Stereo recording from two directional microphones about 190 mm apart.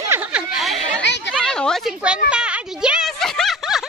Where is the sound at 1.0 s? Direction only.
70° left (ahead or behind).